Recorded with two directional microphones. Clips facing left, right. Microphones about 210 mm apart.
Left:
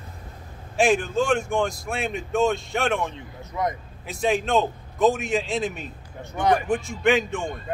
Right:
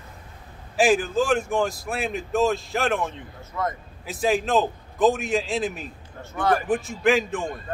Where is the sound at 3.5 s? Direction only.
15° left (ahead or behind).